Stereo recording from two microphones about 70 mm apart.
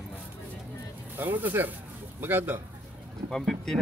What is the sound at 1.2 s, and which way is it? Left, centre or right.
Speech, right.